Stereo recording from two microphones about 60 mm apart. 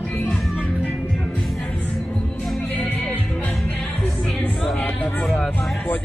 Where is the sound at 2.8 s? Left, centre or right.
Left.